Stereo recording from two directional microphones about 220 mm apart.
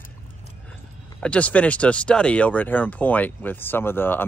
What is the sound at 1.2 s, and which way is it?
Speech, 5° left (ahead or behind).